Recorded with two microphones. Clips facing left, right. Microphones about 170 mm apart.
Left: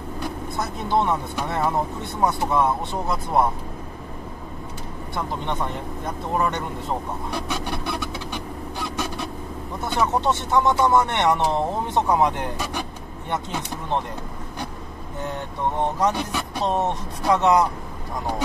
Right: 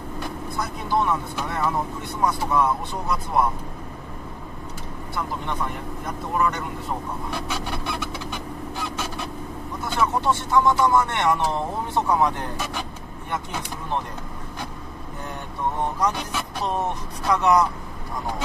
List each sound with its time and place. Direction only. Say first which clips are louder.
0.6 s speech: left 2 dB; 25° left (ahead or behind)
5.1 s speech: left 2 dB; 25° left (ahead or behind)
9.9 s speech: left 1 dB; 20° left (ahead or behind)
16.6 s speech: left 4 dB; 25° left (ahead or behind)